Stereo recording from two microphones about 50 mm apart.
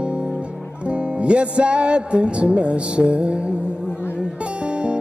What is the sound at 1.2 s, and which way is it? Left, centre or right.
Music, right.